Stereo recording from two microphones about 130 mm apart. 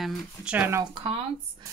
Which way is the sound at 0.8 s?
40° right (ahead or behind).